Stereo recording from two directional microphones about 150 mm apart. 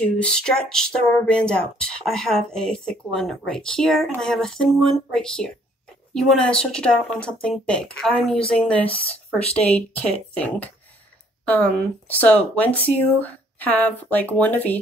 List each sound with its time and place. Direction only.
0.0 s speech: 5° left (ahead or behind)